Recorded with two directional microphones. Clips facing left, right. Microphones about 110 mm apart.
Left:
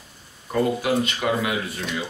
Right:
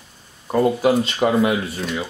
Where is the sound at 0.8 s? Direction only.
30° right (ahead or behind).